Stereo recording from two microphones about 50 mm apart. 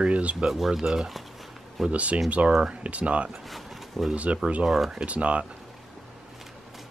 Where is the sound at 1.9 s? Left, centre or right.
Right.